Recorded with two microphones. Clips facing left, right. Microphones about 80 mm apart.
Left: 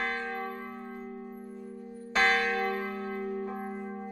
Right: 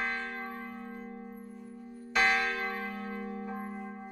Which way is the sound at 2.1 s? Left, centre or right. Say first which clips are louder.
Left 2 dB; left.